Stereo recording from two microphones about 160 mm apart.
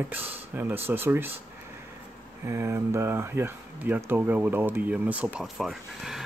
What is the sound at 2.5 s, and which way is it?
Speech, 15° right (ahead or behind).